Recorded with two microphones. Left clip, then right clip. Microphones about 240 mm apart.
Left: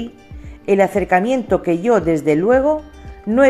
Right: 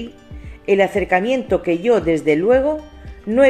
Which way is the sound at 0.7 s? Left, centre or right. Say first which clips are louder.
Left 1 dB; left.